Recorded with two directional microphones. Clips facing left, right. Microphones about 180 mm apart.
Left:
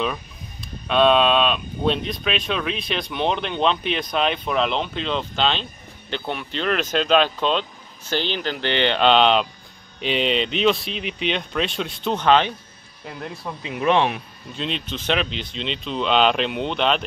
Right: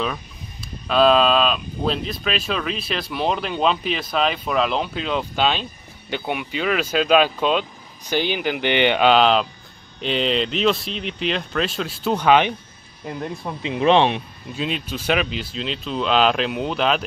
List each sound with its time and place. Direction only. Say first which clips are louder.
0.8 s speech: right 1 dB; centre (ahead or behind); by 14.2 s 25° right (ahead or behind)
14.5 s speech: right 2 dB; 5° right (ahead or behind)